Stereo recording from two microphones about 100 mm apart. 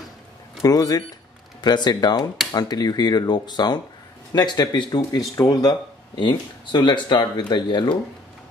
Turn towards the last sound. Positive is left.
turn(degrees=50)  # may be behind; listen again after turning